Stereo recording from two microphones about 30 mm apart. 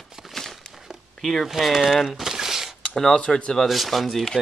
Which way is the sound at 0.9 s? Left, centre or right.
Centre.